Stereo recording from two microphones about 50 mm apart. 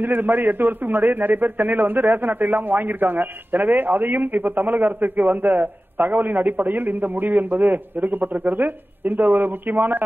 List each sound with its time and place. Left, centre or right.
0.0 s a man's voice: right